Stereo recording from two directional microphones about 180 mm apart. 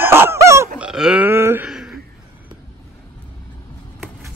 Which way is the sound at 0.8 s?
5° right (ahead or behind).